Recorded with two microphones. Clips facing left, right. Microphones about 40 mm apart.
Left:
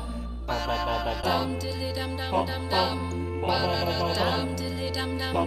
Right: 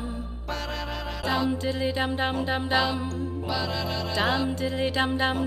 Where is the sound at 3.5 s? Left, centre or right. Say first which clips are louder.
Left 4 dB; centre.